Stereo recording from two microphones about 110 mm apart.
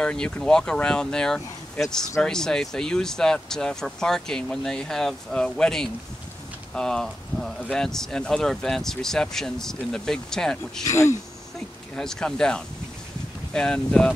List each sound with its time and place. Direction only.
0.0 s speech: 5° left (ahead or behind)
10.8 s speech: 30° left (ahead or behind)
11.9 s speech: 5° left (ahead or behind)